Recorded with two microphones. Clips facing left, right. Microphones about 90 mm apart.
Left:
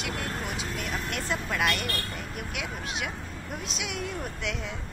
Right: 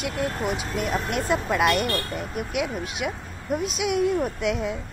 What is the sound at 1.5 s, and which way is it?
Speech, 20° right (ahead or behind).